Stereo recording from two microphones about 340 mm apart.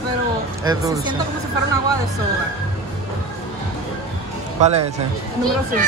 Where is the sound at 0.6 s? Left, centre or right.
Centre.